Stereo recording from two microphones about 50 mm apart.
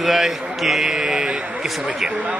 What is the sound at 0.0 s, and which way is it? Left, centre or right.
A man's voice, centre.